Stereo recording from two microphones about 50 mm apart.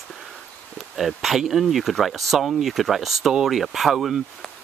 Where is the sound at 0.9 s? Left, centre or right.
Centre.